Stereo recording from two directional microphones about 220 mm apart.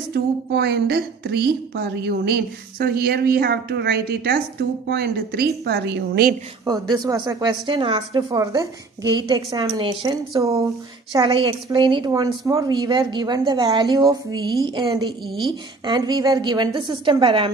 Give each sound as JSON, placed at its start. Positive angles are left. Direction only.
{"t": 0.1, "sound": "a woman's voice", "side_deg": -45}
{"t": 6.6, "sound": "a woman's voice", "side_deg": -15}